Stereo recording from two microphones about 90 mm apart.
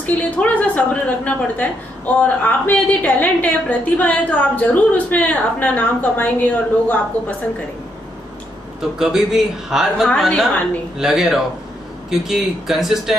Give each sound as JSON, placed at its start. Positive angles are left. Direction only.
{"t": 0.0, "sound": "a woman's voice", "side_deg": 15}
{"t": 8.9, "sound": "a man's voice", "side_deg": -5}